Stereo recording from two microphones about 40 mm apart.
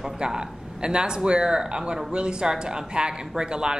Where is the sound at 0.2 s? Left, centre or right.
Centre.